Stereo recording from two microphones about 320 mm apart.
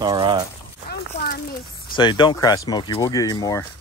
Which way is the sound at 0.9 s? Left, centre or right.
Left.